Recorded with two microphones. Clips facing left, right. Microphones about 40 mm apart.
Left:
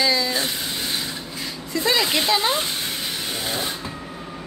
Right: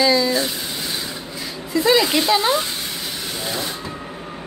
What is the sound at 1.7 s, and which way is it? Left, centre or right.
Speech, centre.